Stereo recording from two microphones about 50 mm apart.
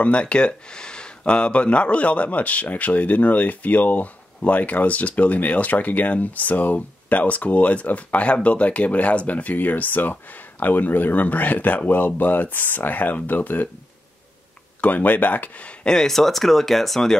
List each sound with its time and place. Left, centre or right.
0.0 s speech: left
14.8 s speech: left
15.9 s speech: centre